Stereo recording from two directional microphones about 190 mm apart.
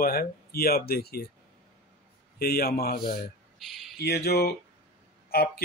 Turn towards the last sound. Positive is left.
turn(degrees=55)  # may be behind; listen again after turning